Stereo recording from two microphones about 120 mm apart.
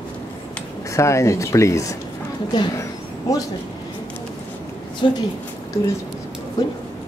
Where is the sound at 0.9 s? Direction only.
25° left (ahead or behind).